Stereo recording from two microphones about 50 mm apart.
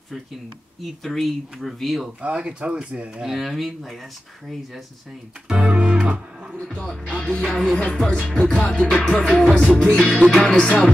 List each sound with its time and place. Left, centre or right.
1.0 s speech: centre
2.2 s speech: right
3.2 s speech: centre
5.6 s music: right
7.1 s music: left
7.8 s speech: centre
8.5 s music: left
9.9 s speech: centre